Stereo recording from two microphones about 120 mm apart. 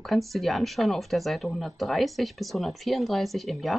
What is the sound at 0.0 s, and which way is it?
Speech, centre (ahead or behind).